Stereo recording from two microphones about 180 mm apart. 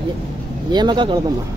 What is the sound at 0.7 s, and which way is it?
Speech, 25° right (ahead or behind).